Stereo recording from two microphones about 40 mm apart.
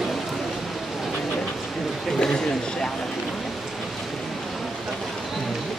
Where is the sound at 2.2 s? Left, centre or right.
Centre.